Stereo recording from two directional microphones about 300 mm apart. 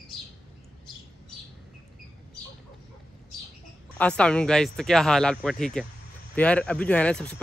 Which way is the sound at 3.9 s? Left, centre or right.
Centre.